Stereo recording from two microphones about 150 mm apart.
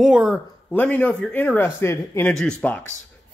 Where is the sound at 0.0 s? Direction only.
5° right (ahead or behind).